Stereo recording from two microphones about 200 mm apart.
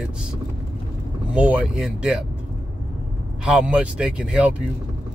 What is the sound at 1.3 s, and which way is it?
Speech, 5° right (ahead or behind).